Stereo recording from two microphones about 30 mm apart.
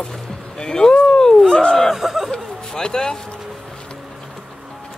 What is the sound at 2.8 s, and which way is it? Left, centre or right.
Speech, left.